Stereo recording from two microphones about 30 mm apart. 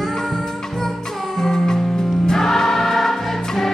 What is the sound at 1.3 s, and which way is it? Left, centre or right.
Music, centre.